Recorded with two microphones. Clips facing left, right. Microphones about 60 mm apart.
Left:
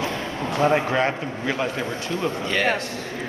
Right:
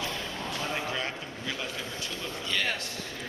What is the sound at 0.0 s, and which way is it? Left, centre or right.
Speech, left.